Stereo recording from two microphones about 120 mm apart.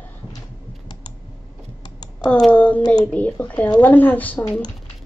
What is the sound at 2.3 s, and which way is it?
A woman's voice, 10° left (ahead or behind).